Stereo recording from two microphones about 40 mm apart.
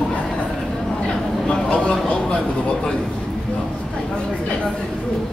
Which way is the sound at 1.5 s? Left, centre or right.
Left.